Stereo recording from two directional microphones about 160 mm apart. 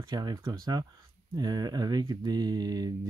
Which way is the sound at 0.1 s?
25° right (ahead or behind).